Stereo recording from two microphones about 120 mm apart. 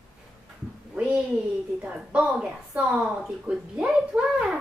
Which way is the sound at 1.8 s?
10° right (ahead or behind).